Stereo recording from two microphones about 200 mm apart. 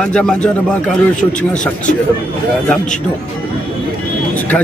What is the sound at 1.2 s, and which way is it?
Speech, 40° left (ahead or behind).